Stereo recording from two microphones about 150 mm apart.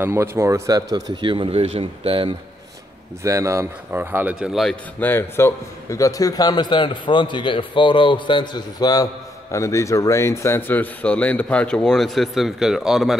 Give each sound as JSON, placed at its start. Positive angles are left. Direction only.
{"t": 0.0, "sound": "speech", "side_deg": -15}
{"t": 3.3, "sound": "speech", "side_deg": -20}
{"t": 5.0, "sound": "a man's voice", "side_deg": 15}